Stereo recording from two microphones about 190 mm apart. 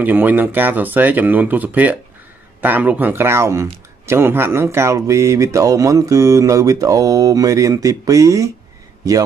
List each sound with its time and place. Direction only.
0.0 s speech: 10° right (ahead or behind)